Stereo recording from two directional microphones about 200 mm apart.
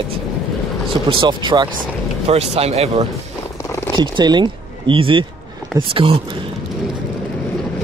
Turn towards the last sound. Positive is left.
turn(degrees=-25)  # may be behind; listen again after turning